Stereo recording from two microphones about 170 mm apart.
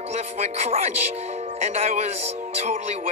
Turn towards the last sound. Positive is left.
turn(degrees=-40)  # may be behind; listen again after turning